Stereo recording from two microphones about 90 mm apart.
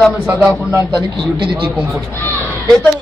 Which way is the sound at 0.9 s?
65° right (ahead or behind).